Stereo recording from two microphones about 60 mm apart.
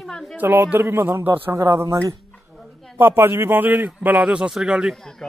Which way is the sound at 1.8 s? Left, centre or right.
Right.